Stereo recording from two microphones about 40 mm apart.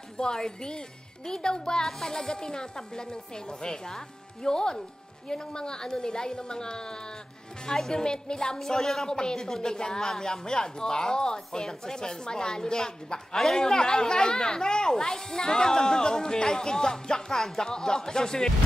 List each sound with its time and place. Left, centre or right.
0.2 s a woman's voice: centre